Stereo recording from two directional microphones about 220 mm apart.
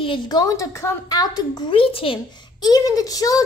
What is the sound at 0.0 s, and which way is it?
A woman's voice, 20° left (ahead or behind).